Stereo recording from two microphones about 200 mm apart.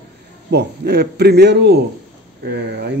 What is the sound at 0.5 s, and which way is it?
A man's voice, 55° right (ahead or behind).